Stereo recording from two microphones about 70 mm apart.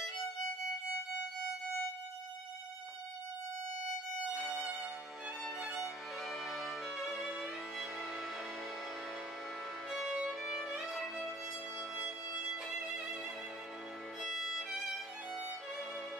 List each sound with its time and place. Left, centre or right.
4.3 s violin: centre
5.6 s music: centre
9.8 s violin: centre
10.8 s music: centre
12.0 s music: centre
14.2 s violin: centre